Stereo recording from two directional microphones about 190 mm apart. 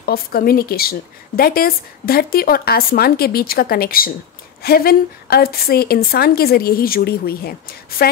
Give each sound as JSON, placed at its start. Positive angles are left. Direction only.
{"t": 0.0, "sound": "speech", "side_deg": 50}